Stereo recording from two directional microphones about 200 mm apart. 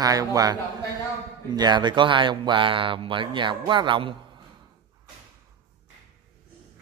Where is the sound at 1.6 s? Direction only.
20° right (ahead or behind).